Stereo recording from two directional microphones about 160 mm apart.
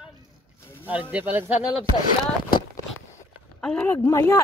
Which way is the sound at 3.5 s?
5° left (ahead or behind).